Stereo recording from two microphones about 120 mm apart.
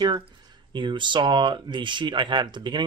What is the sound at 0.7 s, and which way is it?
Speech, 40° right (ahead or behind).